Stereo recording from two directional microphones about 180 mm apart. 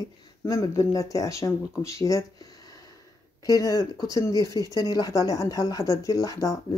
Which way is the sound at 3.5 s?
20° left (ahead or behind).